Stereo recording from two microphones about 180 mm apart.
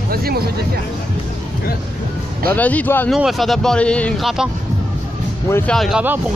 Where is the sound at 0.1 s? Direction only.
60° right (ahead or behind).